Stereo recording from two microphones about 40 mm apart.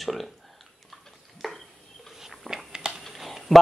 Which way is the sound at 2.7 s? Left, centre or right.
Centre.